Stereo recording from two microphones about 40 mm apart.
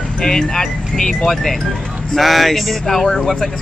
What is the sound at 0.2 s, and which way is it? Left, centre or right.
Speech, centre.